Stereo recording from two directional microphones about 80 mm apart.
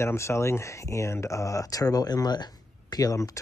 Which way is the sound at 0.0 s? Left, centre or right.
Left.